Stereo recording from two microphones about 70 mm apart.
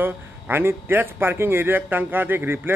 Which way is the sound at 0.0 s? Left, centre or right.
Right.